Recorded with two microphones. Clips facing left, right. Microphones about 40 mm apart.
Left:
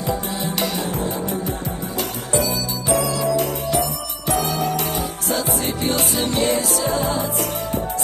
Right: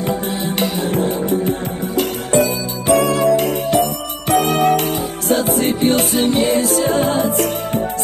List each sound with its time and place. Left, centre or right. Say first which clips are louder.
0.8 s music: right 6 dB; right